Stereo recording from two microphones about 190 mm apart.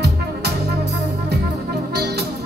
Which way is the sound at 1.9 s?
60° right (ahead or behind).